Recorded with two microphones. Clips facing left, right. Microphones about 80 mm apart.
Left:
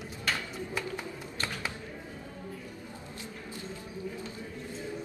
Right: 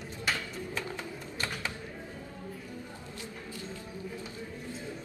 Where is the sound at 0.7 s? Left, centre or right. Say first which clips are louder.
Left 3 dB; centre.